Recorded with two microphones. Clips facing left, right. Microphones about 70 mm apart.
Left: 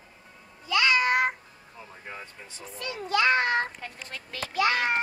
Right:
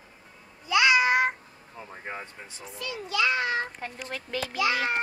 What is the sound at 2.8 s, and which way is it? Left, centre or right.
A child's voice, left.